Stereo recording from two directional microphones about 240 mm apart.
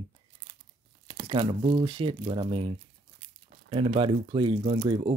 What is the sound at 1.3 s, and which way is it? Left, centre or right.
Speech, centre.